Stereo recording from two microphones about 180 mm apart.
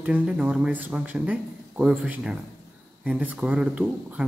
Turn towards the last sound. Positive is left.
turn(degrees=-5)  # may be behind; listen again after turning